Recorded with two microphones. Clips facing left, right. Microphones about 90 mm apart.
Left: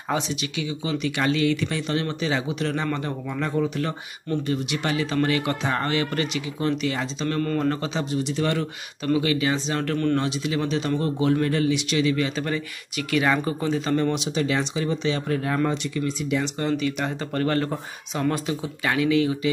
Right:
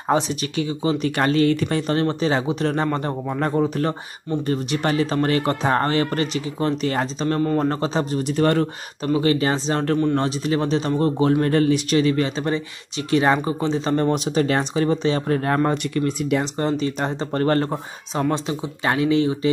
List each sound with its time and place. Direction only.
0.1 s speech: 40° right (ahead or behind)
9.0 s speech: 35° right (ahead or behind); by 16.4 s 50° right (ahead or behind)
16.5 s speech: 35° right (ahead or behind)